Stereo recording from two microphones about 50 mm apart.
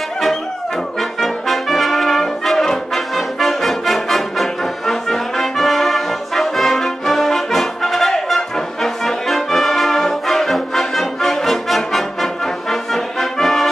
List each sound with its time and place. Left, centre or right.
1.2 s brass instrument: centre
12.9 s music: centre